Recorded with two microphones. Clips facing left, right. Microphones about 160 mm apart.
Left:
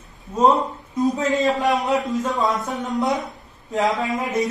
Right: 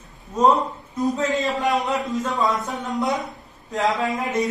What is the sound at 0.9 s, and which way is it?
Speech, 20° left (ahead or behind).